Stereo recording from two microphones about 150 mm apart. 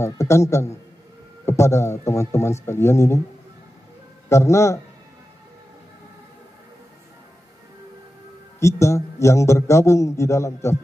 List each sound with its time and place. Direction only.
0.0 s a man's voice: 20° left (ahead or behind)
4.3 s a man's voice: 20° left (ahead or behind)
8.5 s a man's voice: 20° left (ahead or behind)